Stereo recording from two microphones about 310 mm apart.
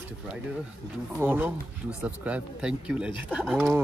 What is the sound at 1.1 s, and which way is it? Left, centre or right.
Speech, centre.